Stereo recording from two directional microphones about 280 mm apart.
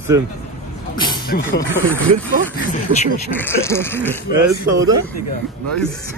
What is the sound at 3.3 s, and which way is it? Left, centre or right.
Speech, centre.